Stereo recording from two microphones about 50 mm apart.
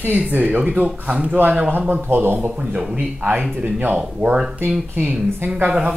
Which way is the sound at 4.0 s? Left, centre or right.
Right.